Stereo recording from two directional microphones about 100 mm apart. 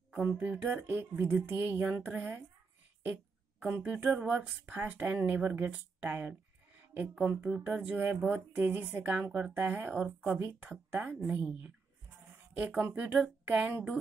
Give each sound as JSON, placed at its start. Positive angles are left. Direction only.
{"t": 0.1, "sound": "speech", "side_deg": -15}
{"t": 3.0, "sound": "a sound", "side_deg": -15}
{"t": 4.6, "sound": "speech", "side_deg": -15}
{"t": 12.5, "sound": "speech", "side_deg": -20}